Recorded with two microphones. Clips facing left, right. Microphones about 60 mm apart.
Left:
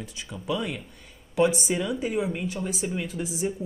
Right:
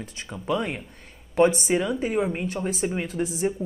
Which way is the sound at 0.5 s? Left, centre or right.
Right.